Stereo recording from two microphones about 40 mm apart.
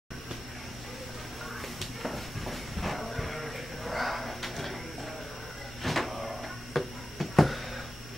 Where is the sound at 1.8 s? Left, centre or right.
Centre.